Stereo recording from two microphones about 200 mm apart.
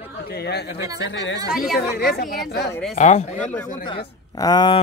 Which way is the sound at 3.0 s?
35° left (ahead or behind).